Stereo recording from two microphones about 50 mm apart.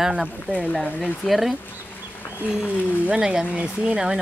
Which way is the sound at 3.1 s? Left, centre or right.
Centre.